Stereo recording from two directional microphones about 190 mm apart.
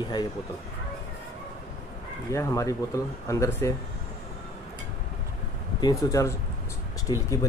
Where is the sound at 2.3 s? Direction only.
15° left (ahead or behind).